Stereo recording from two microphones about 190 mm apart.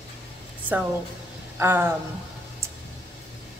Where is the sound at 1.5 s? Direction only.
10° right (ahead or behind).